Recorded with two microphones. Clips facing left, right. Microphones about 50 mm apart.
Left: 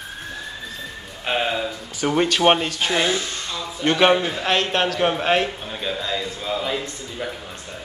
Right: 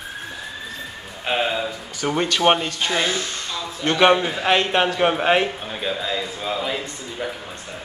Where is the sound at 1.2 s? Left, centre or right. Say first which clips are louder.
Even; centre.